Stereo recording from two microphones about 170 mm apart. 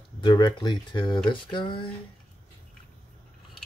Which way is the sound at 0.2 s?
25° left (ahead or behind).